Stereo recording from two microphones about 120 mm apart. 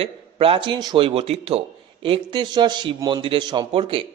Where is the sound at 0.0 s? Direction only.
50° right (ahead or behind).